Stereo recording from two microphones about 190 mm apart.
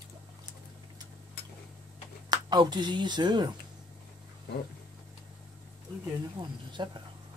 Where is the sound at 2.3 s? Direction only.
20° right (ahead or behind).